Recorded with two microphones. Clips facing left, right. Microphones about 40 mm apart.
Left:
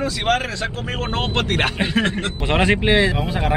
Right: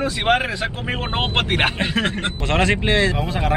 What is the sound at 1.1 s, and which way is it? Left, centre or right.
Speech, right.